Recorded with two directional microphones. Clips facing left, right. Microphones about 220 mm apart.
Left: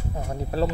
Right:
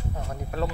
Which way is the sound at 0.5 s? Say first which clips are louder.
Left 5 dB; 30° left (ahead or behind).